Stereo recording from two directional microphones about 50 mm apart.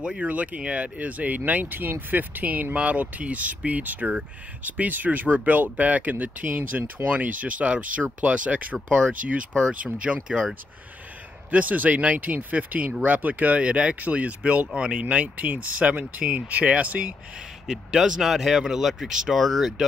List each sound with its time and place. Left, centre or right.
0.0 s speech: centre
0.3 s speech: right
10.2 s speech: centre
11.5 s speech: right
17.6 s speech: centre